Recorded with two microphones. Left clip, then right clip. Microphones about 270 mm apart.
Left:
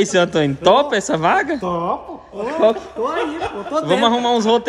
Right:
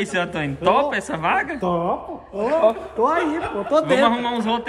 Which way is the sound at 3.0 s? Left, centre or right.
Centre.